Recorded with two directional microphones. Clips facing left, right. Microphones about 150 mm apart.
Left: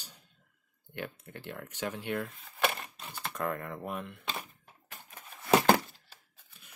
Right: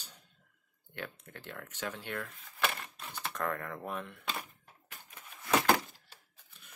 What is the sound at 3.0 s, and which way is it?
Typing, 10° left (ahead or behind).